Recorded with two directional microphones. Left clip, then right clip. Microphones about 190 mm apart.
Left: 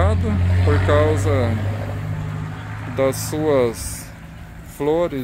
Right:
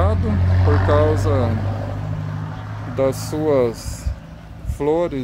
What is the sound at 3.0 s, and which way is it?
Speech, 5° right (ahead or behind).